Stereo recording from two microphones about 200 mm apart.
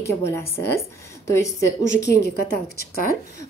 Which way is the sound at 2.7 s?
45° left (ahead or behind).